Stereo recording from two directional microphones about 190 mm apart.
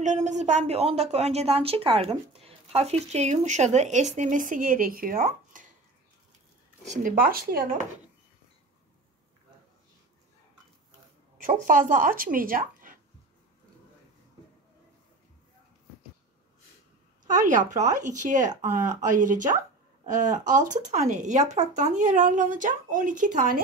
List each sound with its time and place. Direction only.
0.0 s a woman's voice: 40° right (ahead or behind)
6.9 s speech: 45° right (ahead or behind)
11.4 s speech: 45° right (ahead or behind)
17.2 s a woman's voice: 40° right (ahead or behind)